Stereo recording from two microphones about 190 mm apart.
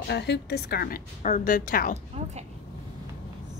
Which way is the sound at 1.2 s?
45° left (ahead or behind).